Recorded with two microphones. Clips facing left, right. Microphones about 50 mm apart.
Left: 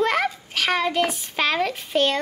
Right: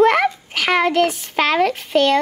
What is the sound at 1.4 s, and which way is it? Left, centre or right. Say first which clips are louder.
Speech: right 6 dB; right.